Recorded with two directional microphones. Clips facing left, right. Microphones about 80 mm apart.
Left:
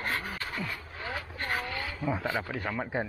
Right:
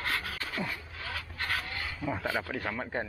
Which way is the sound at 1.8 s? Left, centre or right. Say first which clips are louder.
Left 2 dB; centre.